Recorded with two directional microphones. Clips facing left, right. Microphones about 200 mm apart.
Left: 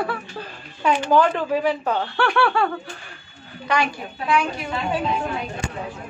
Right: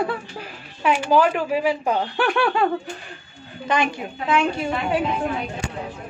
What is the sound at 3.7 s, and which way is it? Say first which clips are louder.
A woman's voice: right 1 dB; 20° right (ahead or behind).